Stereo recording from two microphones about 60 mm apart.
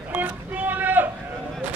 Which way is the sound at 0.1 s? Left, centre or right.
Right.